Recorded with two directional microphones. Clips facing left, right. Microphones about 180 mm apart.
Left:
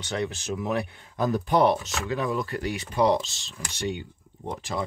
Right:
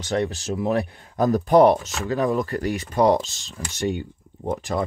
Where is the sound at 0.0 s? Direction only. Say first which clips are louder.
Right 6 dB; 40° right (ahead or behind).